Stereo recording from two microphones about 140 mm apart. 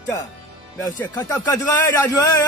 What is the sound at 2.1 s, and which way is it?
Speech, 25° left (ahead or behind).